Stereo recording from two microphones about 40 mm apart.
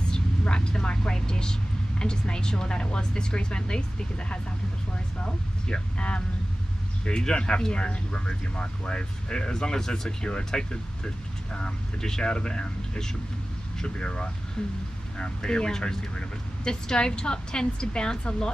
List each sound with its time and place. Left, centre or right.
0.1 s a woman's voice: left
5.2 s speech: left